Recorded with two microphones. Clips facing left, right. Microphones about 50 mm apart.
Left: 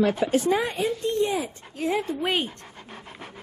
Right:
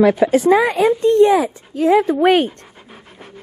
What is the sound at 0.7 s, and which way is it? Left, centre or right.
A woman's voice, right.